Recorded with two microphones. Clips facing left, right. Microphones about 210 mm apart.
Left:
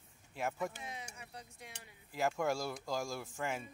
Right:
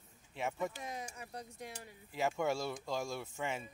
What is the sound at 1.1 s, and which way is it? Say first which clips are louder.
Speech: right 5 dB; 40° right (ahead or behind).